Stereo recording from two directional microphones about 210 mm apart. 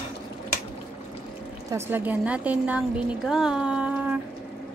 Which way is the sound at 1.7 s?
10° right (ahead or behind).